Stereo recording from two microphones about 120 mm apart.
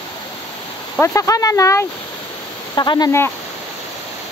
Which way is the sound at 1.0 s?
25° left (ahead or behind).